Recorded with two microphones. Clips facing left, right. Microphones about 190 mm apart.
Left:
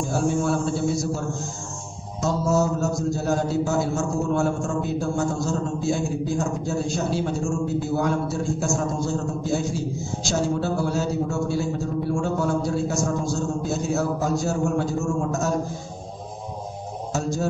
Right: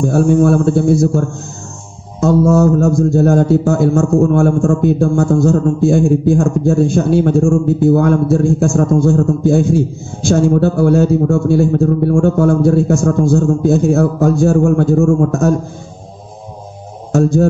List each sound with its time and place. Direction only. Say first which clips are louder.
0.0 s speech: right 12 dB; 55° right (ahead or behind)
17.1 s speech: right 14 dB; 55° right (ahead or behind)